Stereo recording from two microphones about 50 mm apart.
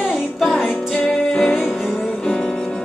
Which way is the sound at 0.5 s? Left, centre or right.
Left.